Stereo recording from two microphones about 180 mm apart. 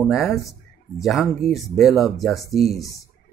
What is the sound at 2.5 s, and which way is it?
Speech, 35° right (ahead or behind).